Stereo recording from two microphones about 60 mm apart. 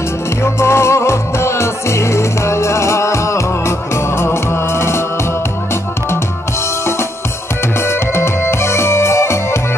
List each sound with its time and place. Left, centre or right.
0.4 s music: left
7.8 s music: left